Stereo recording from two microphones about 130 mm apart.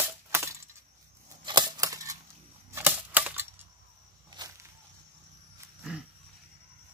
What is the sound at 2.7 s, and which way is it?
Typewriter, 15° right (ahead or behind).